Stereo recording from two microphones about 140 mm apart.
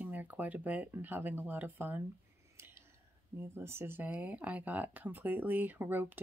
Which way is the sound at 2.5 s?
15° right (ahead or behind).